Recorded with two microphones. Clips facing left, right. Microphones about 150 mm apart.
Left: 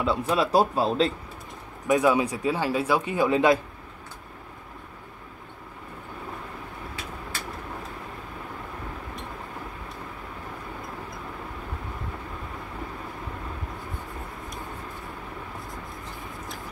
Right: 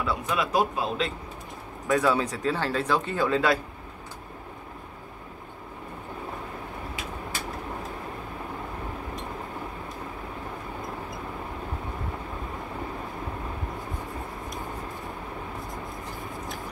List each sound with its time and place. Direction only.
0.0 s speech: 25° left (ahead or behind)
1.9 s speech: 15° left (ahead or behind)